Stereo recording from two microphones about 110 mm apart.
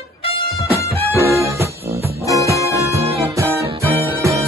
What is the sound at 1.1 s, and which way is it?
Music, 25° right (ahead or behind).